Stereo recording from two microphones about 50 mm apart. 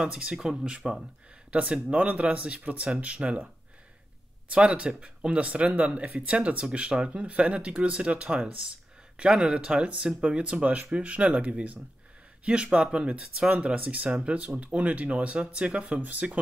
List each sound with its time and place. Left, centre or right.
0.0 s speech: centre
1.5 s speech: right
4.5 s speech: right
16.0 s speech: right